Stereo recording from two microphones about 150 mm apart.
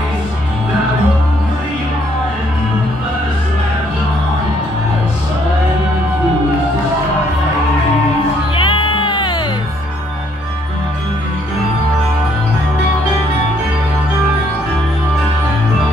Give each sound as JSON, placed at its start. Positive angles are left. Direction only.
{"t": 8.5, "sound": "music", "side_deg": 35}